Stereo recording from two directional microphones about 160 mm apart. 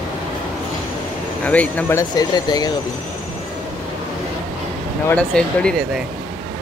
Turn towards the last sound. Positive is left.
turn(degrees=5)  # may be behind; listen again after turning